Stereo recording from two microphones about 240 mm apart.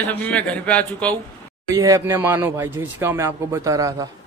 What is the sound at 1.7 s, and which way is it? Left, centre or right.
Speech, centre.